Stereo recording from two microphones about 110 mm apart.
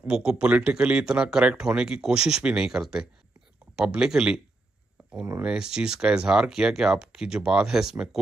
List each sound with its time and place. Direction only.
0.0 s speech: 5° right (ahead or behind)
5.4 s speech: 5° right (ahead or behind)